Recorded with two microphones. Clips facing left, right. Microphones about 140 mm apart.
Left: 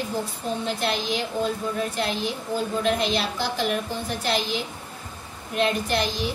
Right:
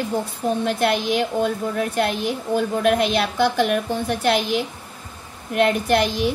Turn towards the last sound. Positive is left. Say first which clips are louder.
# right 6 dB
turn(degrees=-60)  # may be behind; listen again after turning